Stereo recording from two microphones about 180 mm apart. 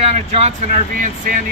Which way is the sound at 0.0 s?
35° right (ahead or behind).